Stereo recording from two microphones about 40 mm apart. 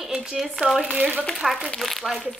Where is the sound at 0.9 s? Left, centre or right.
Right.